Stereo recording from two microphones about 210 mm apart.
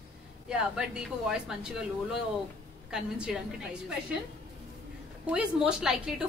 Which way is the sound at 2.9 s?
5° right (ahead or behind).